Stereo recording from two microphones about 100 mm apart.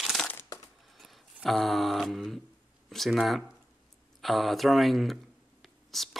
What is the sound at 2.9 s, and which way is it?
Speech, centre (ahead or behind).